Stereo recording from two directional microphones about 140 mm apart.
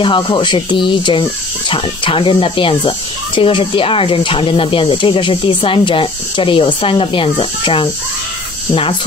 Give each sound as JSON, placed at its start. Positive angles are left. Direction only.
{"t": 0.0, "sound": "speech", "side_deg": 35}